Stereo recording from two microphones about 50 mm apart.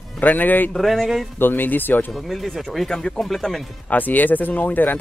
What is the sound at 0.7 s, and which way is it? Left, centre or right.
Speech, centre.